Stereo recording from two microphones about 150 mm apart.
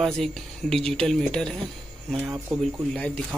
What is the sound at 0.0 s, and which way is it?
Speech, centre (ahead or behind).